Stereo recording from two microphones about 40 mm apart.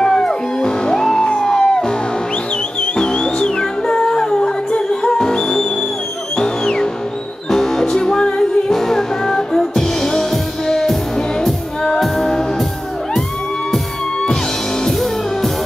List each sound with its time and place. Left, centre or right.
0.0 s music: centre
3.0 s music: centre
8.7 s music: centre
14.9 s music: centre